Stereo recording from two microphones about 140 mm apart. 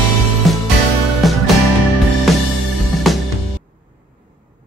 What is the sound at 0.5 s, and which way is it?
Music, centre (ahead or behind).